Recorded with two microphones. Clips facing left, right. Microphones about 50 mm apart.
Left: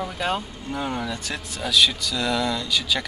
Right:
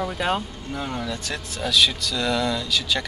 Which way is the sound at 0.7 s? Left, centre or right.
Centre.